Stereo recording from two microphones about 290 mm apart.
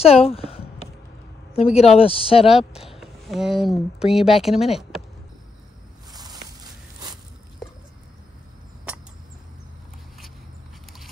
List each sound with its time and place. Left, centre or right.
0.0 s a woman's voice: left
2.7 s speech: centre
6.1 s walk: centre